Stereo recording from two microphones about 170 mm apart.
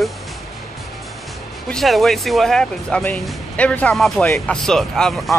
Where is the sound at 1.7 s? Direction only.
Centre (ahead or behind).